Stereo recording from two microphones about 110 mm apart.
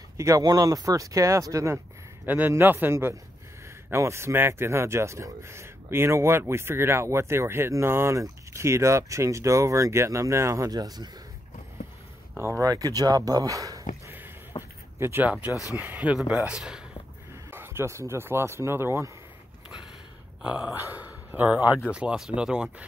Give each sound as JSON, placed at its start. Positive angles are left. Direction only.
{"t": 0.2, "sound": "speech", "side_deg": -30}
{"t": 2.2, "sound": "speech", "side_deg": -15}
{"t": 12.4, "sound": "speech", "side_deg": -25}
{"t": 12.6, "sound": "speech", "side_deg": -35}
{"t": 14.5, "sound": "a sound", "side_deg": 45}
{"t": 15.0, "sound": "speech", "side_deg": -20}
{"t": 17.5, "sound": "speech", "side_deg": -20}
{"t": 20.4, "sound": "speech", "side_deg": -10}